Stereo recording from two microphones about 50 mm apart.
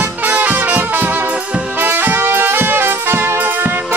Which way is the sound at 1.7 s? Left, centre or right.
Right.